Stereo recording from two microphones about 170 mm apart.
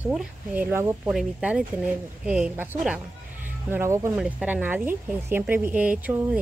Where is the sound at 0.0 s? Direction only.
5° right (ahead or behind).